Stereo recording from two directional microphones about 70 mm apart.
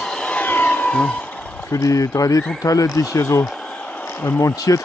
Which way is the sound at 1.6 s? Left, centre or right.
Left.